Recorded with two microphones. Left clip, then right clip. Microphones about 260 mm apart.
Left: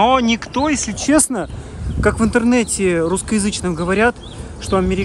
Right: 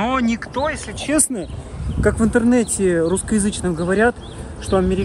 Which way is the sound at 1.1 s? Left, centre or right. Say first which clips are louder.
Left 5 dB; left.